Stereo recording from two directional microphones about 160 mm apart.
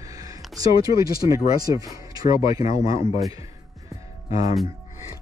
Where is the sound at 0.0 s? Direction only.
20° right (ahead or behind).